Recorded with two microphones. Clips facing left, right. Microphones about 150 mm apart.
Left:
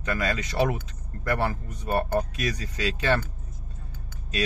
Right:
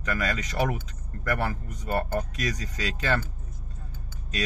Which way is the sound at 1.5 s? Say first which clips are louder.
Left 2 dB; 30° left (ahead or behind).